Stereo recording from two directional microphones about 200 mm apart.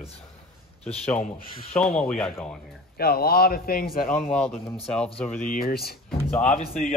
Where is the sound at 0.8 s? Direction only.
30° left (ahead or behind).